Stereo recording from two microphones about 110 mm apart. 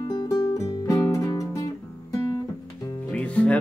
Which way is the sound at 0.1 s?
40° left (ahead or behind).